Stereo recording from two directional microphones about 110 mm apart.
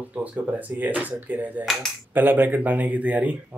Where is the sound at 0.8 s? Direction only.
15° right (ahead or behind).